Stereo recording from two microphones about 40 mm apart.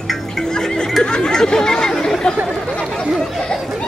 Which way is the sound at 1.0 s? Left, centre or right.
Centre.